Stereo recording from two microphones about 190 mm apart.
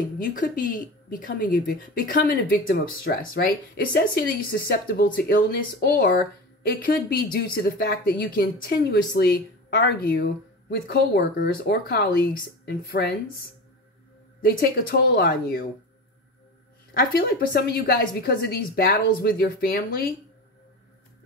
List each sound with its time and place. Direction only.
0.2 s speech: 45° left (ahead or behind)
14.4 s speech: 50° left (ahead or behind)
17.1 s speech: 50° left (ahead or behind)